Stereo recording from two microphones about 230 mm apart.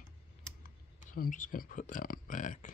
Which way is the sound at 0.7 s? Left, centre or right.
Left.